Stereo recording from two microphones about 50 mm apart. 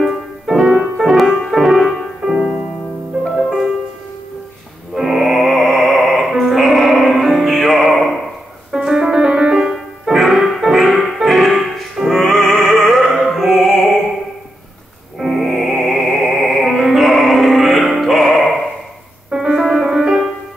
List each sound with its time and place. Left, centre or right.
0.0 s music: centre
4.9 s music: centre
8.7 s music: centre
9.6 s music: centre
15.1 s music: centre